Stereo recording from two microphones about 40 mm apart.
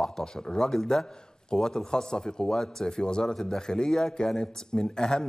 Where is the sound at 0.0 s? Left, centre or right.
Centre.